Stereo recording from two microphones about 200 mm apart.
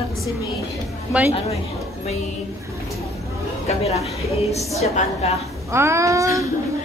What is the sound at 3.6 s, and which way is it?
Speech, 30° left (ahead or behind).